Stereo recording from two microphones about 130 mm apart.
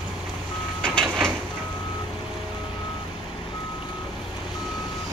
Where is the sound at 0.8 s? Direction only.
5° left (ahead or behind).